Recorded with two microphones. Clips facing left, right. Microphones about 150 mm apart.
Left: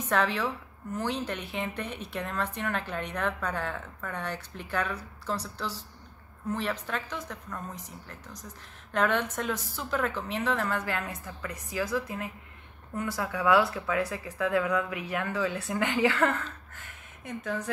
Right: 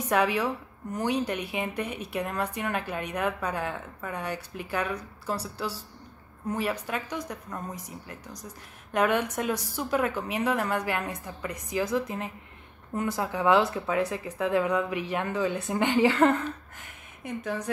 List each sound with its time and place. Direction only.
0.1 s a woman's voice: 10° right (ahead or behind)